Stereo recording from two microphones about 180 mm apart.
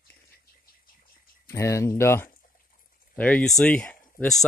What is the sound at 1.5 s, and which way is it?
Speech, 15° left (ahead or behind).